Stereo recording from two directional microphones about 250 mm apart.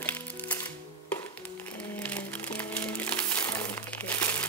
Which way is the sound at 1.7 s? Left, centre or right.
Centre.